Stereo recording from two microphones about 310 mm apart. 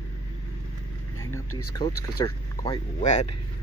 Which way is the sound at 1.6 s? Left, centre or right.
Centre.